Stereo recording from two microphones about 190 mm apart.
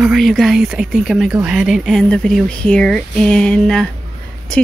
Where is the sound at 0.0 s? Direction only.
Centre (ahead or behind).